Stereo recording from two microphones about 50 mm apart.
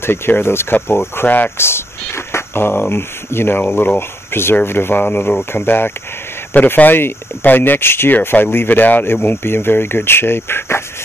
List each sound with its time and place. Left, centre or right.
0.0 s speech: left
1.6 s a sound: left
4.3 s speech: left